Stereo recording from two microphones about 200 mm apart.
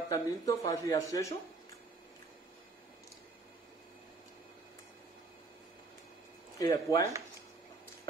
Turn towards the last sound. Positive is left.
turn(degrees=15)  # may be behind; listen again after turning